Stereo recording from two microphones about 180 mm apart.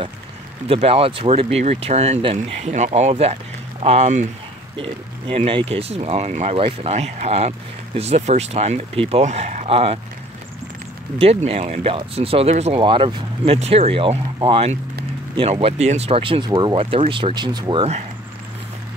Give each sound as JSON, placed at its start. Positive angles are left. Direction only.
{"t": 0.7, "sound": "speech", "side_deg": -35}
{"t": 4.7, "sound": "speech", "side_deg": -30}
{"t": 11.1, "sound": "speech", "side_deg": -35}